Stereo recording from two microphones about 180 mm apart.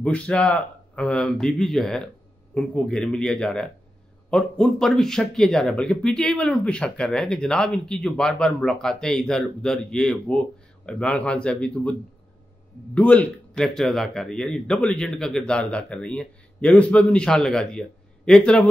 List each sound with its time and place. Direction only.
0.0 s a man's voice: 5° left (ahead or behind)